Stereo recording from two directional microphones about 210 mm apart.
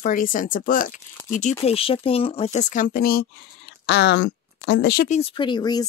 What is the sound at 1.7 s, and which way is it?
Speech, 25° left (ahead or behind).